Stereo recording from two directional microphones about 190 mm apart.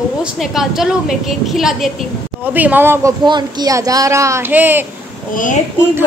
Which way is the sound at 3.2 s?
20° right (ahead or behind).